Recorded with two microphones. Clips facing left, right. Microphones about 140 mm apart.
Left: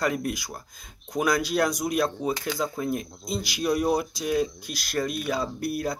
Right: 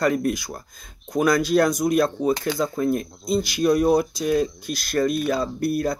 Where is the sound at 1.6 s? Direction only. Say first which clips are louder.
Right 6 dB; 50° right (ahead or behind).